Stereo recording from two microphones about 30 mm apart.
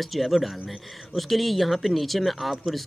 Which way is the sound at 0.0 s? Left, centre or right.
Centre.